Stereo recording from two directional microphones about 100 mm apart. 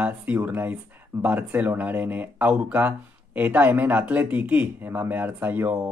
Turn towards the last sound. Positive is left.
turn(degrees=-20)  # may be behind; listen again after turning